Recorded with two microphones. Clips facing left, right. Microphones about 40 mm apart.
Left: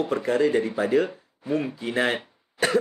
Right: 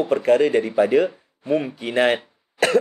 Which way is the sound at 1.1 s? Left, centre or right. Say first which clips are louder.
Right 5 dB; right.